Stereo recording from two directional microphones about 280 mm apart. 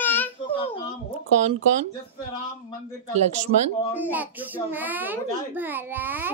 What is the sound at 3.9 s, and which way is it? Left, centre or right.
A child's voice, centre.